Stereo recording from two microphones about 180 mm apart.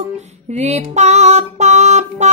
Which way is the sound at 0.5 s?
40° right (ahead or behind).